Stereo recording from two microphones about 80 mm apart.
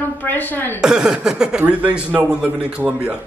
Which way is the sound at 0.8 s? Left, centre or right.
Centre.